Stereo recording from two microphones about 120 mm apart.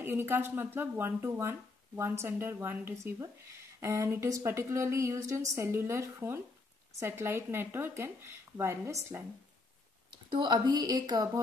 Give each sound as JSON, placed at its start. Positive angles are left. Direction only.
{"t": 0.0, "sound": "speech", "side_deg": -20}
{"t": 10.1, "sound": "a woman's voice", "side_deg": -35}